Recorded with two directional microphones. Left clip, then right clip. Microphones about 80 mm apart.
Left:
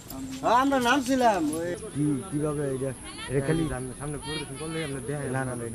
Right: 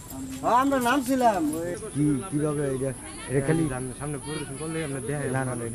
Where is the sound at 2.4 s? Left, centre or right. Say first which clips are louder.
Right 1 dB; centre.